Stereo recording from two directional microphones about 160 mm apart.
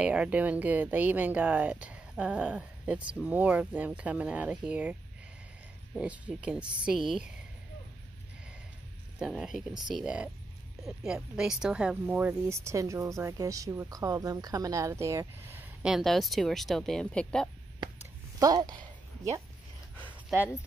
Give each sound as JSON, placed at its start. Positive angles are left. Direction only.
{"t": 0.0, "sound": "speech", "side_deg": -10}
{"t": 5.9, "sound": "speech", "side_deg": -5}
{"t": 9.2, "sound": "speech", "side_deg": 0}
{"t": 15.9, "sound": "speech", "side_deg": 0}
{"t": 18.4, "sound": "speech", "side_deg": -25}